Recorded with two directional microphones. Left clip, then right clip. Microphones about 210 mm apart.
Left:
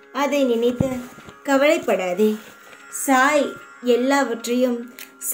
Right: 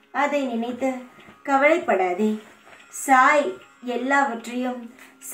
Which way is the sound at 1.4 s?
50° left (ahead or behind).